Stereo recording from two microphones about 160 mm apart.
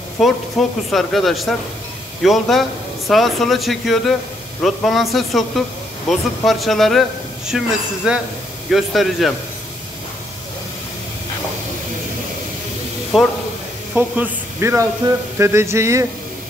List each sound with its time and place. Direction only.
0.2 s speech: centre (ahead or behind)
13.1 s speech: centre (ahead or behind)
15.3 s a sound: 15° right (ahead or behind)